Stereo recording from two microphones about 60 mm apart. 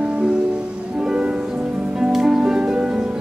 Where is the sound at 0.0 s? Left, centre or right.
Centre.